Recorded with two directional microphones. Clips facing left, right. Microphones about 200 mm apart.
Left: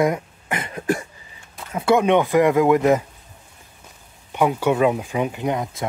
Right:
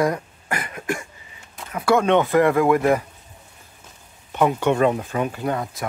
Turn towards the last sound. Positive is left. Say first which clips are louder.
# left 1 dB
turn(degrees=20)  # may be behind; listen again after turning